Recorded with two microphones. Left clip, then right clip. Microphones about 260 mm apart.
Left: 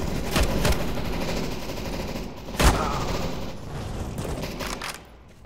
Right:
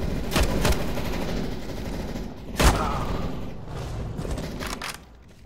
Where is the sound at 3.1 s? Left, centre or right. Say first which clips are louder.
Left 3 dB; left.